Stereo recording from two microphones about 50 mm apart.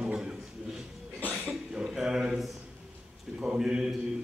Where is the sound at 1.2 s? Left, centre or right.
Right.